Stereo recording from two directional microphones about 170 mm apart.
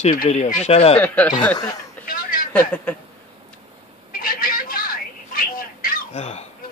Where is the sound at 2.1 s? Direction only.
55° left (ahead or behind).